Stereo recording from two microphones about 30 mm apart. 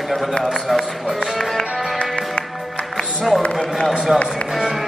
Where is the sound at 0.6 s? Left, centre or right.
Centre.